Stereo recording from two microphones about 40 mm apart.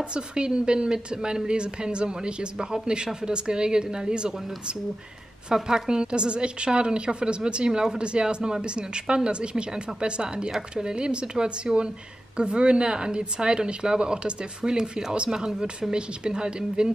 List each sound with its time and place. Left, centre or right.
0.1 s a woman's voice: right